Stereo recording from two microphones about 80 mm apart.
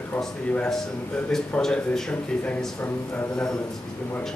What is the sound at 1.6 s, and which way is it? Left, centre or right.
Speech, centre.